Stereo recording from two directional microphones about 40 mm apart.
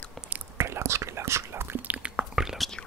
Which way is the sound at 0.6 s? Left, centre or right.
Right.